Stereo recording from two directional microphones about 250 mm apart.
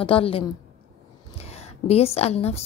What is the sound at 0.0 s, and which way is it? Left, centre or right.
A woman's voice, left.